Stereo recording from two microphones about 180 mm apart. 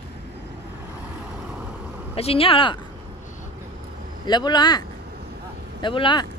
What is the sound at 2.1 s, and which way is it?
Speech, 30° left (ahead or behind).